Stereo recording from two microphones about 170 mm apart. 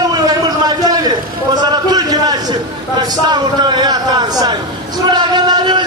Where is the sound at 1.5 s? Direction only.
25° right (ahead or behind).